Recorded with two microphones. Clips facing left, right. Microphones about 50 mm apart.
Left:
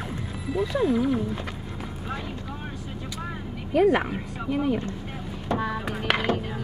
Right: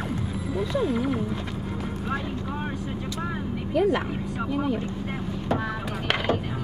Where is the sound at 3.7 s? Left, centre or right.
Centre.